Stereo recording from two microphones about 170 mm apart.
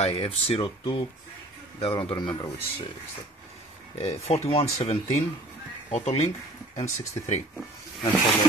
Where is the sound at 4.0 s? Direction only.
40° left (ahead or behind).